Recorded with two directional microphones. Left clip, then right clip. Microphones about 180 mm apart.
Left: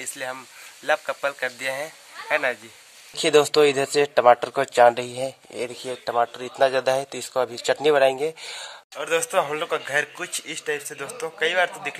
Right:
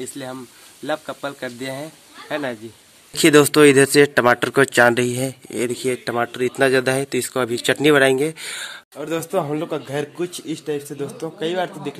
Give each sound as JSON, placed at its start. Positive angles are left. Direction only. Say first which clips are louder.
{"t": 0.0, "sound": "speech", "louder": "right 1 dB", "side_deg": 20}
{"t": 3.2, "sound": "speech", "louder": "right 5 dB", "side_deg": 0}